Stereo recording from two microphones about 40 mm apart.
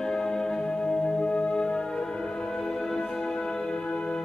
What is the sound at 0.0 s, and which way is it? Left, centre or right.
Music, centre.